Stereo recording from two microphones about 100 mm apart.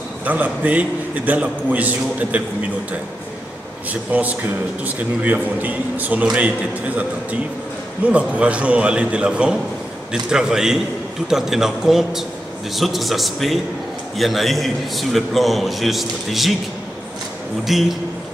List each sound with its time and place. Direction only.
0.2 s a man's voice: 15° right (ahead or behind)
3.9 s a man's voice: 15° right (ahead or behind)
8.1 s a man's voice: 10° right (ahead or behind)
17.6 s a man's voice: centre (ahead or behind)